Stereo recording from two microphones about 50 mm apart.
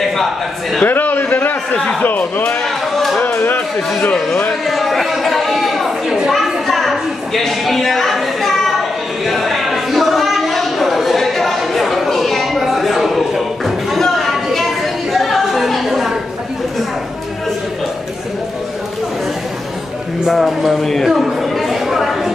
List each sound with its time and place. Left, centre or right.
0.8 s a man's voice: left
4.6 s chatter: centre
6.2 s a sound: centre
15.1 s chatter: centre
20.2 s speech: centre
21.1 s a sound: centre